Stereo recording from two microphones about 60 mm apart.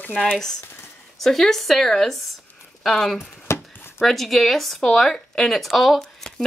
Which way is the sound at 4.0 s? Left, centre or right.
Centre.